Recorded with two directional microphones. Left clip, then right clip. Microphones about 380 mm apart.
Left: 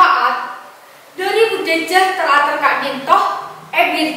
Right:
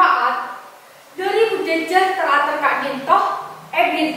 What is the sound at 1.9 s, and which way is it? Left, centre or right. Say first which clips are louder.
A woman's voice: left 3 dB; centre.